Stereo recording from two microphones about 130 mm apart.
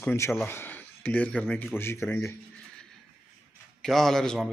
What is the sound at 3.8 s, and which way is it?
Speech, centre (ahead or behind).